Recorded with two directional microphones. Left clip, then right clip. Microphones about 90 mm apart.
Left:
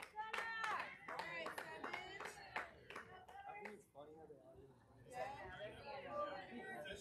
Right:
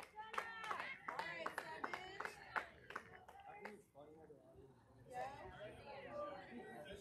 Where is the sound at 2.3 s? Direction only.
Centre (ahead or behind).